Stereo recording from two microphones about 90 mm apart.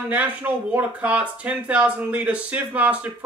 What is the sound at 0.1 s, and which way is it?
Speech, 15° right (ahead or behind).